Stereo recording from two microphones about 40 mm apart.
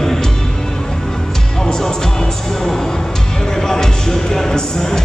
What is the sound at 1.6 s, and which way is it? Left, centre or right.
Music, centre.